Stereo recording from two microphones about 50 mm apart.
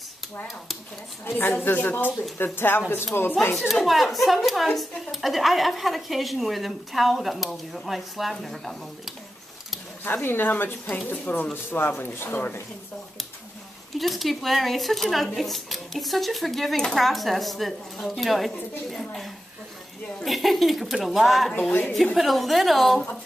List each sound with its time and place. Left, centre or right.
1.4 s speech: left
2.3 s speech: left
3.5 s speech: centre
10.0 s speech: left
13.9 s a woman's voice: centre